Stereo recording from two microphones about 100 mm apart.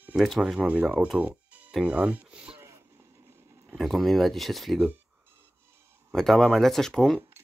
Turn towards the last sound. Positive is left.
turn(degrees=5)  # may be behind; listen again after turning